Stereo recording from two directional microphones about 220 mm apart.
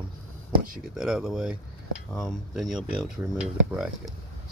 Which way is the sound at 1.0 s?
Centre (ahead or behind).